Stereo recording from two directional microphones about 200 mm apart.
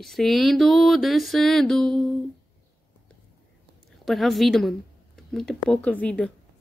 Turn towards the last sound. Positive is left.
turn(degrees=5)  # may be behind; listen again after turning